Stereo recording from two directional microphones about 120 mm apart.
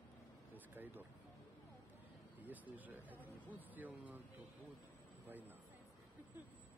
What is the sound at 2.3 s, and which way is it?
Speech, 15° right (ahead or behind).